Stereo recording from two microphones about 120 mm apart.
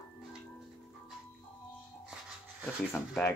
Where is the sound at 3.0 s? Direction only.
20° left (ahead or behind).